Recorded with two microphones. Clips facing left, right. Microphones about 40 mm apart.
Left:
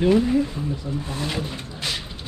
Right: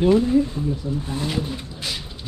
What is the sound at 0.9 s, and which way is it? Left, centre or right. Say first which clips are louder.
Speech: right 2 dB; left.